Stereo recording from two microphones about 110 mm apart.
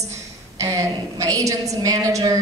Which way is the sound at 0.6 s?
30° right (ahead or behind).